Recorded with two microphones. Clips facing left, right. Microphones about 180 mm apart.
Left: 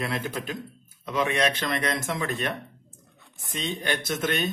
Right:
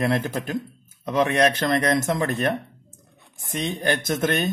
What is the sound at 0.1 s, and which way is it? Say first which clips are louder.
Speech: right 6 dB; 45° right (ahead or behind).